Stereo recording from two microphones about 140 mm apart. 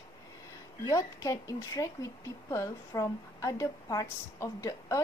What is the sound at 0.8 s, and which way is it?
A woman's voice, 25° left (ahead or behind).